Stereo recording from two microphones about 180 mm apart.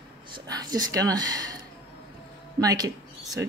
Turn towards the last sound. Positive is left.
turn(degrees=-20)  # may be behind; listen again after turning